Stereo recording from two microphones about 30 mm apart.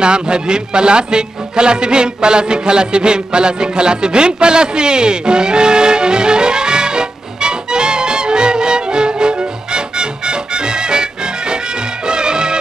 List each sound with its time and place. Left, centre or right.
0.0 s music: right
12.1 s music: right